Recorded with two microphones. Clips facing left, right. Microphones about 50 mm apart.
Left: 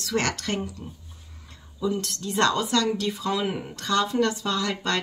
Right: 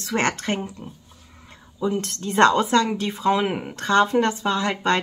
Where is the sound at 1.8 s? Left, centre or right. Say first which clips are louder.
Right 3 dB; right.